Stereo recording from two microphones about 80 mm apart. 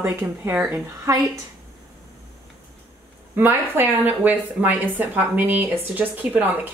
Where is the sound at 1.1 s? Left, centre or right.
Right.